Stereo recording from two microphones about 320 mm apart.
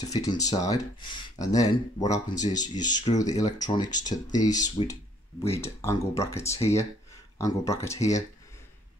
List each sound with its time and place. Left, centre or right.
0.1 s speech: centre
3.1 s speech: centre